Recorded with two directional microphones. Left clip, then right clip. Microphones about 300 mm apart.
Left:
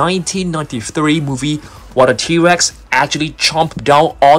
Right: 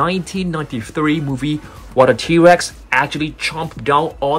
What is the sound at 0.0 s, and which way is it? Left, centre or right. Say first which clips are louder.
Speech: left 3 dB; centre.